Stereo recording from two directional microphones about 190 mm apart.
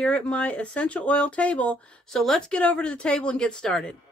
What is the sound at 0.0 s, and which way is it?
Speech, 5° left (ahead or behind).